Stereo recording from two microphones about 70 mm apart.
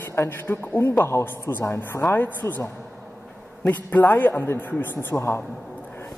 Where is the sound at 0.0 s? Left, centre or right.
Left.